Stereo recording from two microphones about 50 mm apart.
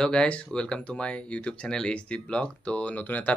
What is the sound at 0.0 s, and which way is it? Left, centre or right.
Speech, centre.